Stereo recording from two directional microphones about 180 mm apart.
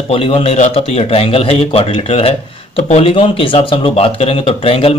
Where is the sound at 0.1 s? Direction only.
30° left (ahead or behind).